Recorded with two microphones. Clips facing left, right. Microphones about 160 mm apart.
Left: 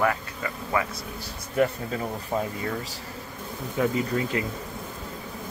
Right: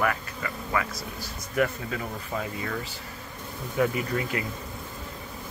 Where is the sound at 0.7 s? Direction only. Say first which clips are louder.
Left 2 dB; 30° left (ahead or behind).